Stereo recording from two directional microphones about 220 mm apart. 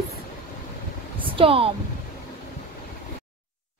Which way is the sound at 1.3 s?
25° right (ahead or behind).